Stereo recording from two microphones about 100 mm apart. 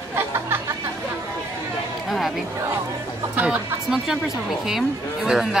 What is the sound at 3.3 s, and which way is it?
Speech, 10° right (ahead or behind).